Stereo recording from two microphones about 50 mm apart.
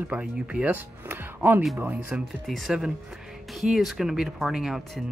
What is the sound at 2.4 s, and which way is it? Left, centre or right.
Speech, centre.